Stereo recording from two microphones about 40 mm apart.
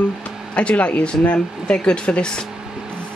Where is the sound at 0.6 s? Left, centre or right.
Left.